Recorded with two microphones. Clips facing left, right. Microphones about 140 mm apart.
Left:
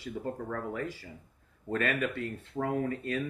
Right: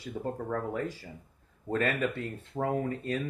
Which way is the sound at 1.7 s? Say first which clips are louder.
Right 1 dB; 30° right (ahead or behind).